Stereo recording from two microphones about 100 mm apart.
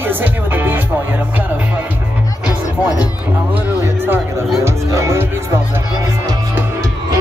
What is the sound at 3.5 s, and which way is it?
Music, 20° right (ahead or behind).